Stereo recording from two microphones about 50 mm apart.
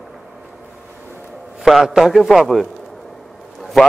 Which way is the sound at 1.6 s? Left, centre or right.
Centre.